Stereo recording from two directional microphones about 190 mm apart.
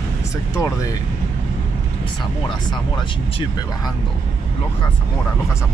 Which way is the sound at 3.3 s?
20° left (ahead or behind).